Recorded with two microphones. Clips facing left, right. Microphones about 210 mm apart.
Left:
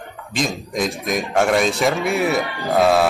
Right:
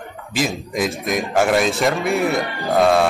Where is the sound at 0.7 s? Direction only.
Centre (ahead or behind).